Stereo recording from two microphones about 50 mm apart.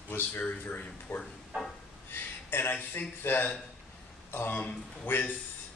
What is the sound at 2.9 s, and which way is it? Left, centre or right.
Speech, left.